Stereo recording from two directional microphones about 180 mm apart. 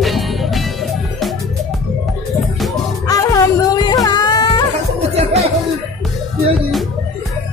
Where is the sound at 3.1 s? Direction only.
20° left (ahead or behind).